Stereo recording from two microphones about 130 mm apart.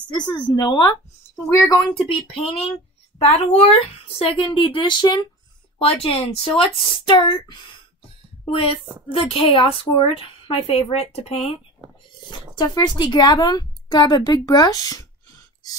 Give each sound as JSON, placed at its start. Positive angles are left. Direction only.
{"t": 0.1, "sound": "speech", "side_deg": 35}
{"t": 2.3, "sound": "a woman's voice", "side_deg": 50}
{"t": 8.5, "sound": "a woman's voice", "side_deg": 45}
{"t": 12.3, "sound": "speech", "side_deg": 35}